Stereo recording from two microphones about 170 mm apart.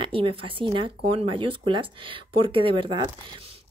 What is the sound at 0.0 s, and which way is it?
Speech, 30° right (ahead or behind).